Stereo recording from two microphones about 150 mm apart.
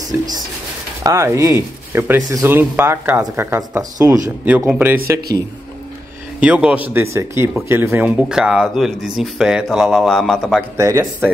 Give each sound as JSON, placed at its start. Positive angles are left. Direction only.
{"t": 1.0, "sound": "speech", "side_deg": -20}
{"t": 6.4, "sound": "speech", "side_deg": -10}
{"t": 10.8, "sound": "speech", "side_deg": -20}